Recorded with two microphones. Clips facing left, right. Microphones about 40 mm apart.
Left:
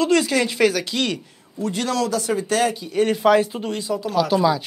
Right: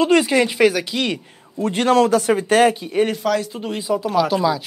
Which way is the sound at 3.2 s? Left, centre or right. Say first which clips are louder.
Left 4 dB; left.